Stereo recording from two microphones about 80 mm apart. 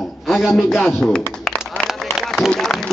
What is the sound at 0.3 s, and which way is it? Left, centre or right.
Speech, left.